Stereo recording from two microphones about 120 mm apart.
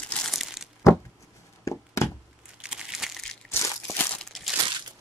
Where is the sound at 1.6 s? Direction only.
25° left (ahead or behind).